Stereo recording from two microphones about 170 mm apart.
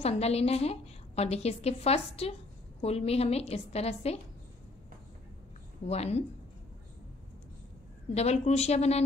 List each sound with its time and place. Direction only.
0.0 s a woman's voice: 35° left (ahead or behind)
5.9 s a woman's voice: 40° left (ahead or behind)
8.1 s a woman's voice: 40° left (ahead or behind)